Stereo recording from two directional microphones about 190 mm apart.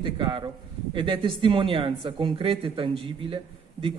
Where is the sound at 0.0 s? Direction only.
25° right (ahead or behind).